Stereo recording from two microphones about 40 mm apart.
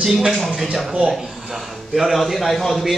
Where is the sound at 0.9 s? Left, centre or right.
Right.